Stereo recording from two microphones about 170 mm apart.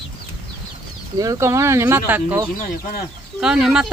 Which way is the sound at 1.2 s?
20° right (ahead or behind).